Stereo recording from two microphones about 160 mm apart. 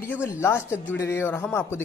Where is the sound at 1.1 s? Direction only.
15° left (ahead or behind).